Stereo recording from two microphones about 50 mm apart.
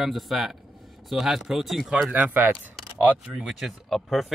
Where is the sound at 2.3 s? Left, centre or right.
Right.